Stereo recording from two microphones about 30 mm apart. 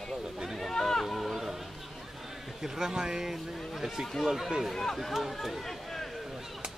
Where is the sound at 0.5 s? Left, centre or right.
Centre.